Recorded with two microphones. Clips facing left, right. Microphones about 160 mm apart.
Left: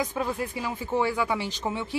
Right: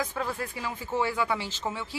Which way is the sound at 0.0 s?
15° left (ahead or behind).